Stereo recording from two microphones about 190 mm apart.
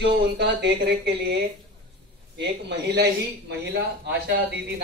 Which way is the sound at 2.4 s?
65° right (ahead or behind).